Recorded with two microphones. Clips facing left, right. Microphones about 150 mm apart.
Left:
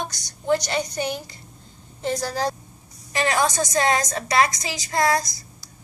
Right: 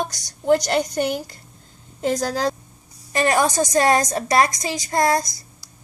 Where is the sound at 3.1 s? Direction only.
45° right (ahead or behind).